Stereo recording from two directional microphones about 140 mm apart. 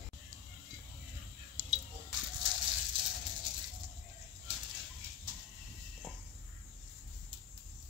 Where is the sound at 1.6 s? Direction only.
15° right (ahead or behind).